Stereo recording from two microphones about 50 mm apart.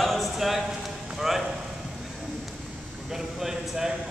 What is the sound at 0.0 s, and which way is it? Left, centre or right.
Horse, centre.